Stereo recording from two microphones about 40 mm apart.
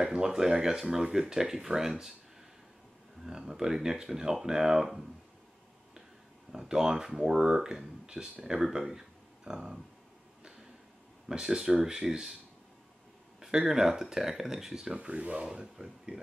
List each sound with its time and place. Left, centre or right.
0.0 s speech: centre
3.3 s speech: centre
6.5 s speech: centre
11.2 s speech: centre
13.4 s speech: centre
15.0 s speech: right
15.4 s speech: centre